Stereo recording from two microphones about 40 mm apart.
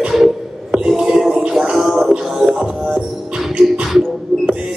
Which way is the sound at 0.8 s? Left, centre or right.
Centre.